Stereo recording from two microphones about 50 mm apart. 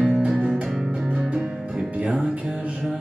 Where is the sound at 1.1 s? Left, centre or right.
Right.